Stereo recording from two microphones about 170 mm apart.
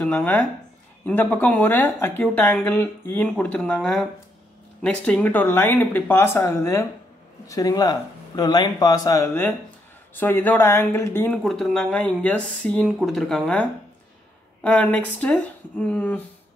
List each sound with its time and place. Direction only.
0.0 s speech: 10° left (ahead or behind)
11.4 s speech: centre (ahead or behind)